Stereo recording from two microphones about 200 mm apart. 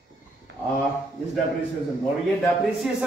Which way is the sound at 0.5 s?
65° right (ahead or behind).